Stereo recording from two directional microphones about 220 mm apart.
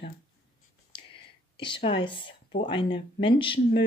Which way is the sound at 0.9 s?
25° left (ahead or behind).